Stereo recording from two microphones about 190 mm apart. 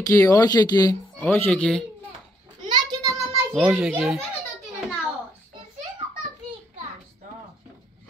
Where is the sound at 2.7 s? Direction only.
20° right (ahead or behind); by 4.1 s centre (ahead or behind).